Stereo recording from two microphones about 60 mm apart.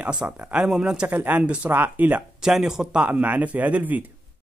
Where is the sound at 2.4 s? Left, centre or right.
Centre.